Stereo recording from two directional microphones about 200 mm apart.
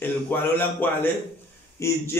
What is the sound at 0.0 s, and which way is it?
Speech, 10° left (ahead or behind).